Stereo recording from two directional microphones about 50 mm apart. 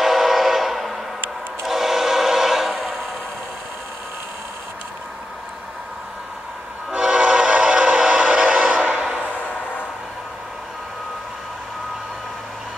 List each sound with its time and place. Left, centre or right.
0.0 s train: centre
7.0 s train: centre